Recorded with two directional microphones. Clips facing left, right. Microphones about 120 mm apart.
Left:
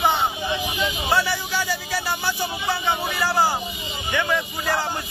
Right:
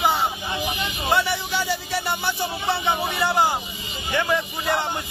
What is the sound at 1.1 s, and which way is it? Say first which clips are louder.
A man's voice: right 1 dB; 25° right (ahead or behind).